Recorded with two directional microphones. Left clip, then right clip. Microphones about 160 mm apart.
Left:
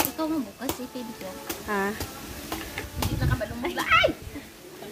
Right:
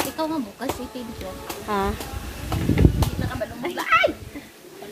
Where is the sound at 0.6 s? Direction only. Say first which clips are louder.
Right 4 dB; 45° right (ahead or behind).